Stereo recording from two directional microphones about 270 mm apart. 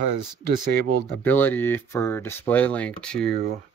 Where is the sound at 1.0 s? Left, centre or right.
Centre.